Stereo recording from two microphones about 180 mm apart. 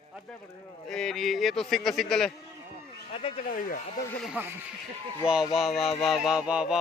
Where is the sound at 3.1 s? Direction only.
35° left (ahead or behind).